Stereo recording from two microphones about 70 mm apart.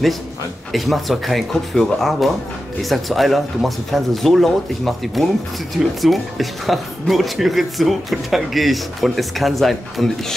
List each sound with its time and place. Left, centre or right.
0.7 s speech: centre